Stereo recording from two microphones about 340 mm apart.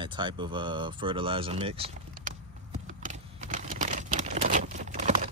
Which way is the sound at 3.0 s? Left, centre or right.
Right.